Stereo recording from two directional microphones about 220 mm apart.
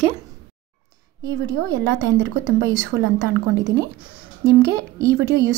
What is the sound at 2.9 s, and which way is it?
A woman's voice, 55° right (ahead or behind).